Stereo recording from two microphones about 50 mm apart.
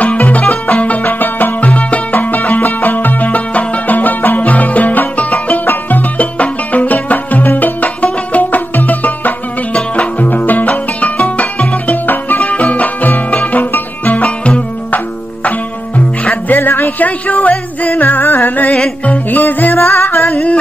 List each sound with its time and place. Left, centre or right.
0.2 s music: left
1.0 s music: left
1.7 s music: left
10.7 s music: left
16.4 s music: left